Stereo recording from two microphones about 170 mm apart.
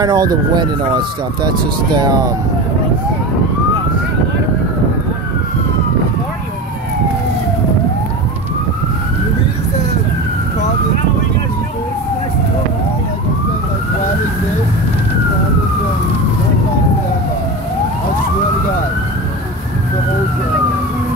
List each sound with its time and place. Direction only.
0.0 s speech: 25° right (ahead or behind)